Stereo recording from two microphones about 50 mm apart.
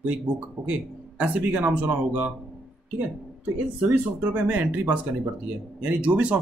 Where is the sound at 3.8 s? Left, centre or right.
Right.